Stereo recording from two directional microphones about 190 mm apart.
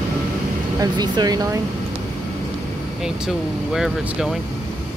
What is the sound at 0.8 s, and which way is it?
Speech, 20° right (ahead or behind).